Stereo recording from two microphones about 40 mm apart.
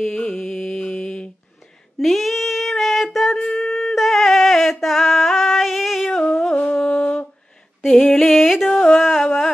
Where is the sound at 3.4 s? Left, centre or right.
Centre.